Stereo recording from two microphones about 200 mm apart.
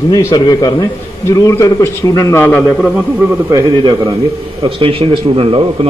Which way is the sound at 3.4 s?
20° right (ahead or behind).